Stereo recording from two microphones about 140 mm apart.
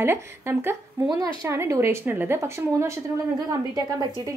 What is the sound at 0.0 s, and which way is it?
A woman's voice, 15° right (ahead or behind).